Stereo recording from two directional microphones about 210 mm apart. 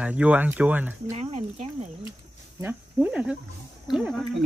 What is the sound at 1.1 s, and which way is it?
Speech, 30° right (ahead or behind).